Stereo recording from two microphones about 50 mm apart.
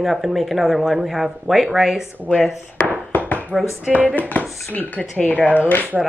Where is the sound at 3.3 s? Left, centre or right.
Left.